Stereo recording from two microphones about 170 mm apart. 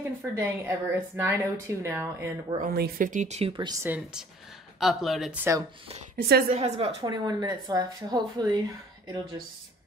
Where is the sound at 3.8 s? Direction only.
5° right (ahead or behind).